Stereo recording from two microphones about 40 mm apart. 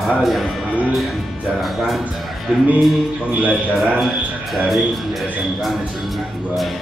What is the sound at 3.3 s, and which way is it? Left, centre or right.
Speech, right.